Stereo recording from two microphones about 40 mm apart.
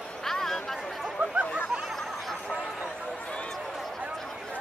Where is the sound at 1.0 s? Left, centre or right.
Right.